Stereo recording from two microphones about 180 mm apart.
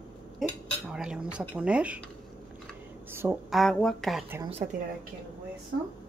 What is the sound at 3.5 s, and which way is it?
Speech, centre (ahead or behind).